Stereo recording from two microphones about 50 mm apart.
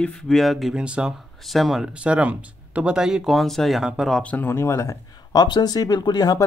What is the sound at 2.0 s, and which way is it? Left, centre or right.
Speech, right.